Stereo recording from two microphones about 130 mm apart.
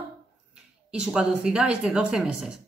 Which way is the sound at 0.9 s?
5° right (ahead or behind).